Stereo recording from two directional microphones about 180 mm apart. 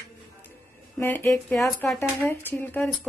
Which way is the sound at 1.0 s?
10° left (ahead or behind).